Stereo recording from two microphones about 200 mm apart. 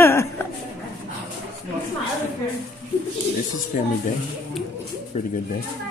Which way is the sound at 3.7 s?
40° left (ahead or behind).